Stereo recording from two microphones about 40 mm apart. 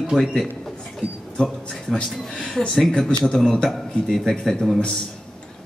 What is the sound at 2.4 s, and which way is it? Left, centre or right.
Speech, left.